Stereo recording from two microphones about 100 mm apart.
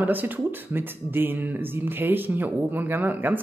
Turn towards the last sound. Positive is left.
turn(degrees=-20)  # may be behind; listen again after turning